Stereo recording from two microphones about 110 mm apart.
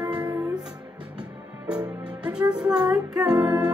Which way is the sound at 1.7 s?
10° right (ahead or behind).